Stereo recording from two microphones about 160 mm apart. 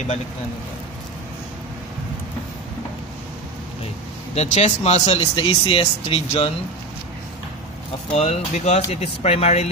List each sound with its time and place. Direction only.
4.4 s speech: 45° left (ahead or behind)
8.1 s speech: 40° left (ahead or behind)